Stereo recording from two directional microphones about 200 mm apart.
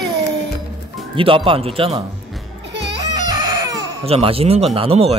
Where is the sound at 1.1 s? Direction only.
25° right (ahead or behind).